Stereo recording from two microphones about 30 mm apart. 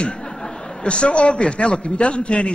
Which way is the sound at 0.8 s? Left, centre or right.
Left.